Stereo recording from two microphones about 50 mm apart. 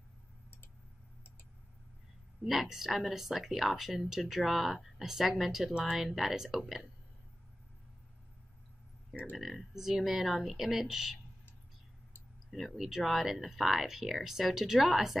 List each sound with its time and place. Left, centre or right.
2.4 s speech: centre
9.1 s speech: right
9.4 s speech: centre
12.4 s speech: centre